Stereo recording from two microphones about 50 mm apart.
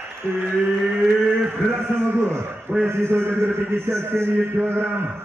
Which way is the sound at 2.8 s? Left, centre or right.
Right.